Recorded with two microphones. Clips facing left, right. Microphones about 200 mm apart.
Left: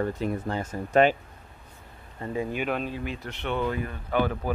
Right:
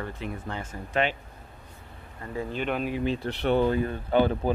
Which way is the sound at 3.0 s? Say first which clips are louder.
Right 6 dB; 30° right (ahead or behind).